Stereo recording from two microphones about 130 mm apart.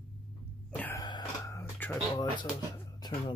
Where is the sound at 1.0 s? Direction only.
35° left (ahead or behind).